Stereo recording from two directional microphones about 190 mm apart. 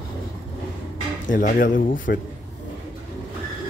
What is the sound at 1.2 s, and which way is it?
Speech, 45° left (ahead or behind).